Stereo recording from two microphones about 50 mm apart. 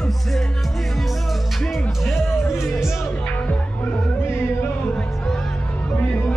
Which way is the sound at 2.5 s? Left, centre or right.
Centre.